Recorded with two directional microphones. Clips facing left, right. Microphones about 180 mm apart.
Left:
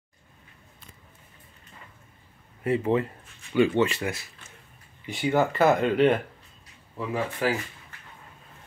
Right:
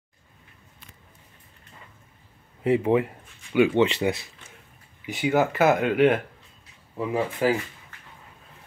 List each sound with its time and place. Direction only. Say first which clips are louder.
2.6 s speech: right 3 dB; 15° right (ahead or behind)
3.8 s speech: right 4 dB; 20° right (ahead or behind)
5.0 s speech: right 1 dB; 5° right (ahead or behind)